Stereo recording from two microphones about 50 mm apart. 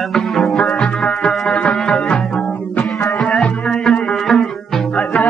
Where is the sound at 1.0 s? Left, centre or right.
Centre.